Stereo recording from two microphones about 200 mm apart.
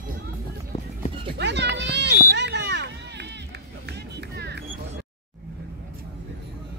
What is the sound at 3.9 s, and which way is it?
Music, 55° right (ahead or behind).